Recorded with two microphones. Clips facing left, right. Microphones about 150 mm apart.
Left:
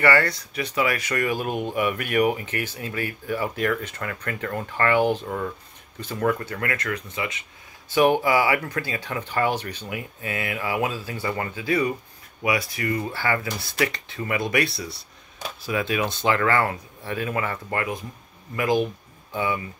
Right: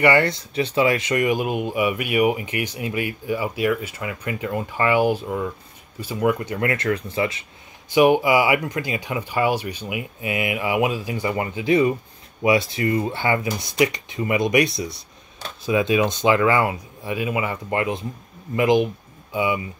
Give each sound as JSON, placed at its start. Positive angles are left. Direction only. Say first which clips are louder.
{"t": 0.0, "sound": "speech", "louder": "right 3 dB", "side_deg": -20}
{"t": 7.9, "sound": "speech", "louder": "right 3 dB", "side_deg": -10}